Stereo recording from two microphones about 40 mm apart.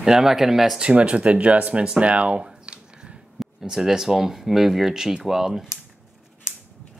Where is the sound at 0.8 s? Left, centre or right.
Right.